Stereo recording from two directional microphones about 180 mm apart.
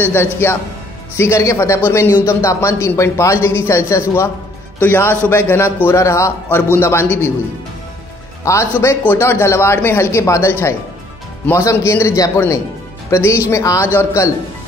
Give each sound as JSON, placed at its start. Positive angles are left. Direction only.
{"t": 0.1, "sound": "speech", "side_deg": 15}
{"t": 8.5, "sound": "speech", "side_deg": 15}